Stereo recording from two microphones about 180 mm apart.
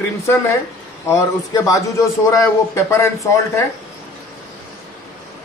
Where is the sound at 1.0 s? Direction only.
15° left (ahead or behind).